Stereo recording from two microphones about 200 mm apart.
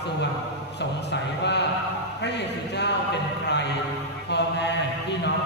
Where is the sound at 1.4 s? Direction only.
60° left (ahead or behind).